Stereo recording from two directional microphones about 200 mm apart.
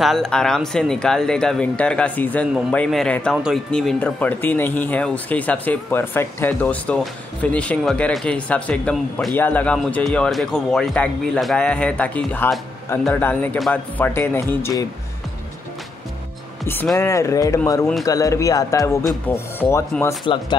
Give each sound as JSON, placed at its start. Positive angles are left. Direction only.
{"t": 0.0, "sound": "speech", "side_deg": 0}
{"t": 16.6, "sound": "speech", "side_deg": 10}